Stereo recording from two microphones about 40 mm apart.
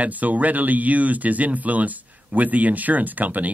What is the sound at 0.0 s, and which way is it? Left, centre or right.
A man's voice, right.